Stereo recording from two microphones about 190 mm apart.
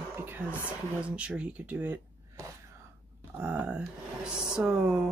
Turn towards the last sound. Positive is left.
turn(degrees=-5)  # may be behind; listen again after turning